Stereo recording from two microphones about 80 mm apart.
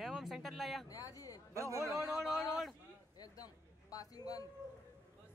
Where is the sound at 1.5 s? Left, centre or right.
Right.